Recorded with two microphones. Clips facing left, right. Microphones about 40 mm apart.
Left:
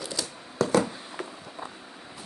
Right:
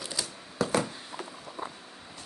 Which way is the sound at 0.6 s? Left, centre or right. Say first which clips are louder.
Left 3 dB; centre.